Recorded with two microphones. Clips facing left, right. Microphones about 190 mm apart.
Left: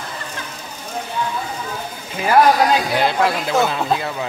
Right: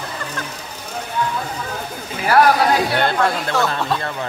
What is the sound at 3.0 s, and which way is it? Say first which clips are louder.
Speech: left 1 dB; 5° left (ahead or behind).